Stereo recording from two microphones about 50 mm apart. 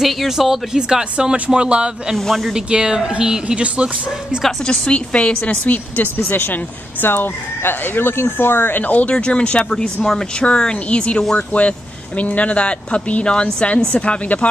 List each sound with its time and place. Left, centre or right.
0.0 s speech: centre
2.1 s speech: centre
2.5 s speech: centre
4.6 s a woman's voice: left
9.1 s speech: left